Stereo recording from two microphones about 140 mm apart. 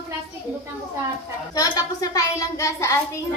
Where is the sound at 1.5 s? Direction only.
25° left (ahead or behind).